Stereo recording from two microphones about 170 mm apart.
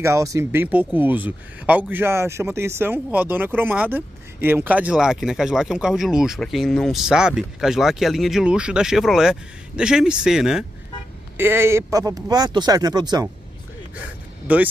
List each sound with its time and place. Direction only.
0.0 s speech: 20° right (ahead or behind); by 10.6 s 5° right (ahead or behind)
11.3 s speech: 15° right (ahead or behind)
14.5 s speech: 10° right (ahead or behind)